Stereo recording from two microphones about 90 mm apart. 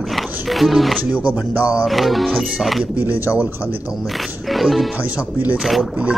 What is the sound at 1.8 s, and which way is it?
Speech, centre (ahead or behind).